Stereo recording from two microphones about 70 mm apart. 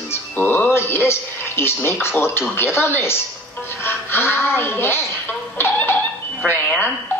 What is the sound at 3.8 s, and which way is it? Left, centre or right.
Music, left.